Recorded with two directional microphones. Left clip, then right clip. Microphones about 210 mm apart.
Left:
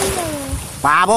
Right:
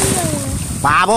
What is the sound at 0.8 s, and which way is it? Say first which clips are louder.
Boat: even; 15° right (ahead or behind).